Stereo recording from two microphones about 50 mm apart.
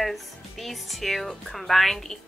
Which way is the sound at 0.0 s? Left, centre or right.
Centre.